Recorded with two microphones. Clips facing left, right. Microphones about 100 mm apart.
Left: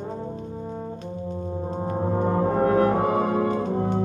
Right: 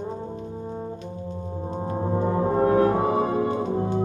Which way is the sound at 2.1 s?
40° left (ahead or behind).